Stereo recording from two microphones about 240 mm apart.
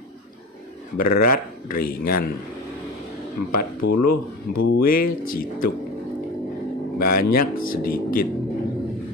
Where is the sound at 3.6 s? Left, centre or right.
Left.